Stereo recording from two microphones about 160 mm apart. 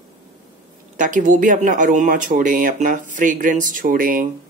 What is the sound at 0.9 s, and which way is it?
Speech, 50° right (ahead or behind).